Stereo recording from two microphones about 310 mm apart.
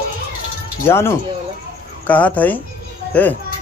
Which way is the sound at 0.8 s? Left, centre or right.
Centre.